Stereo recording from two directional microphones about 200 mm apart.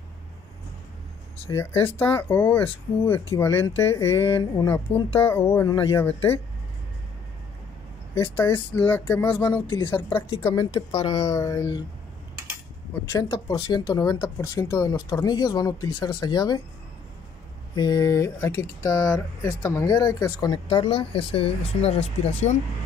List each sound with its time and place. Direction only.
1.5 s speech: 10° left (ahead or behind); by 5.0 s 30° left (ahead or behind)
5.2 s speech: 10° left (ahead or behind)
8.1 s speech: 10° left (ahead or behind)
9.8 s speech: 25° left (ahead or behind)
13.1 s speech: 15° left (ahead or behind)
17.7 s speech: 20° left (ahead or behind)